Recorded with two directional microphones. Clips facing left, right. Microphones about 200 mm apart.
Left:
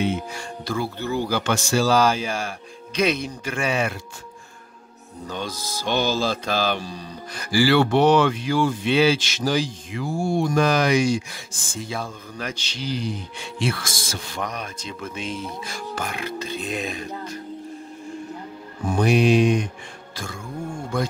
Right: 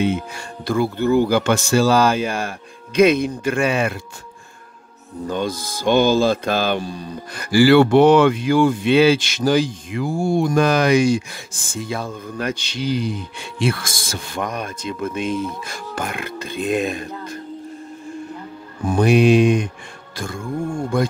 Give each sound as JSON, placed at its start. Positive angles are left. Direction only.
{"t": 0.0, "sound": "speech", "side_deg": -55}
{"t": 5.3, "sound": "mantra", "side_deg": -55}
{"t": 11.8, "sound": "speech", "side_deg": -55}
{"t": 13.6, "sound": "mantra", "side_deg": -55}
{"t": 18.9, "sound": "speech", "side_deg": -55}
{"t": 20.2, "sound": "mantra", "side_deg": -55}